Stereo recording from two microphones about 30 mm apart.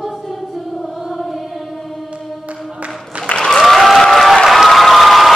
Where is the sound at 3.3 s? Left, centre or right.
Left.